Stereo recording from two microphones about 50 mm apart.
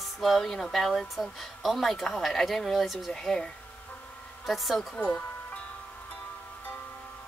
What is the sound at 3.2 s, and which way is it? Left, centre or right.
Speech, centre.